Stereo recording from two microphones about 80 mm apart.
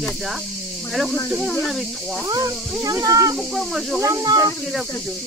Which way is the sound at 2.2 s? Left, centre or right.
Right.